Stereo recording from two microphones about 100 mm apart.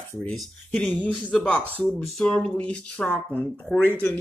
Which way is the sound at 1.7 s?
15° left (ahead or behind).